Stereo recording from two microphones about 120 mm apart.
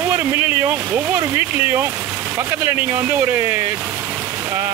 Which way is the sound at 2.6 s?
20° right (ahead or behind).